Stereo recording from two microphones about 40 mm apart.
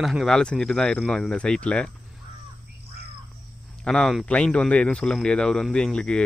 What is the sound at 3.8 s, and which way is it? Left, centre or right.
Speech, centre.